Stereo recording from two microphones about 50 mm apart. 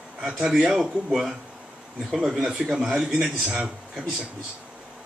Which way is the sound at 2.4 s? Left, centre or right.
Centre.